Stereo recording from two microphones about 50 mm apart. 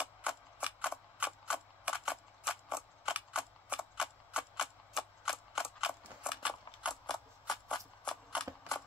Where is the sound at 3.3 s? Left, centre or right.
Right.